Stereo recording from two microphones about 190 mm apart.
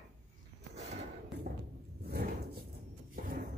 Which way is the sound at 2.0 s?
55° right (ahead or behind).